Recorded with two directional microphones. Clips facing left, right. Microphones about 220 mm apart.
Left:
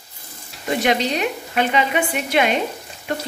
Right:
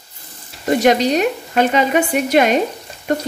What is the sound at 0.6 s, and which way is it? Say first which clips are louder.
A woman's voice: right 6 dB; 45° right (ahead or behind).